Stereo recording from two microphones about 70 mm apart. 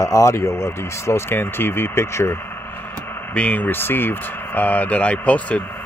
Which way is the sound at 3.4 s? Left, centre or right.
Left.